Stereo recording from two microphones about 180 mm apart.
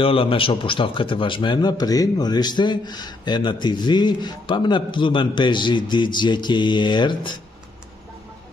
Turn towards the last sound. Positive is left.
turn(degrees=25)  # may be behind; listen again after turning